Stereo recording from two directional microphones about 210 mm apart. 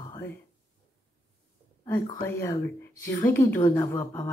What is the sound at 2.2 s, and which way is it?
A woman's voice, 15° left (ahead or behind).